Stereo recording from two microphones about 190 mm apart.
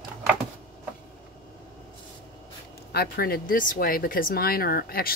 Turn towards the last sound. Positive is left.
turn(degrees=50)  # may be behind; listen again after turning